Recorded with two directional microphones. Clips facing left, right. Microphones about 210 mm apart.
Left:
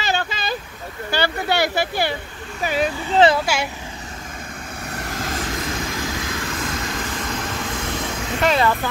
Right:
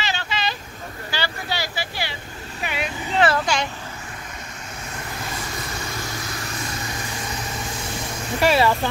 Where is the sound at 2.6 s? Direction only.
35° left (ahead or behind).